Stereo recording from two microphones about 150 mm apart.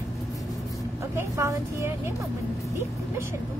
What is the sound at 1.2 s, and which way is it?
Speech, 20° right (ahead or behind).